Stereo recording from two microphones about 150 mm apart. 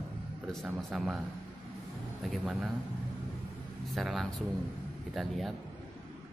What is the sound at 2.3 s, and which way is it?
Speech, centre (ahead or behind).